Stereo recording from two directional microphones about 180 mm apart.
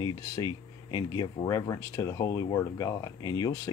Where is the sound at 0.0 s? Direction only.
20° left (ahead or behind).